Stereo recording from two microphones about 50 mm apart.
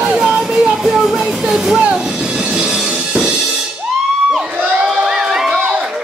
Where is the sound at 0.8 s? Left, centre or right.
Centre.